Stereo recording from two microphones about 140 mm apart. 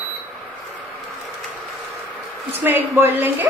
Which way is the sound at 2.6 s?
15° right (ahead or behind).